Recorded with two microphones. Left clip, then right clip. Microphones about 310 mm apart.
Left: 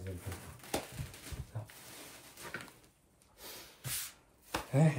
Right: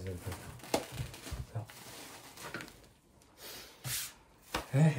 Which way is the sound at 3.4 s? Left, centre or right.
Centre.